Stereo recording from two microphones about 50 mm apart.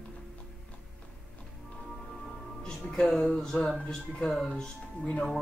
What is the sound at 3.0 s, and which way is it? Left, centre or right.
Speech, centre.